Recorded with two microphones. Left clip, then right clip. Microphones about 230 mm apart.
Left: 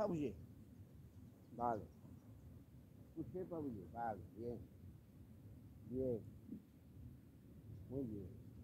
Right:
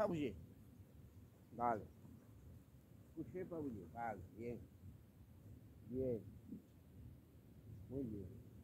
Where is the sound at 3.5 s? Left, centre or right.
Centre.